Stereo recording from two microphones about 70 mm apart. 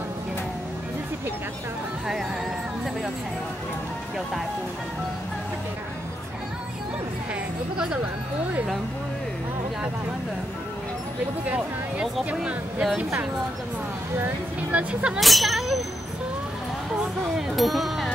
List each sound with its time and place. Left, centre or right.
7.7 s speech: centre
11.4 s speech: centre
14.2 s speech: right
15.1 s speech: centre
17.6 s speech: centre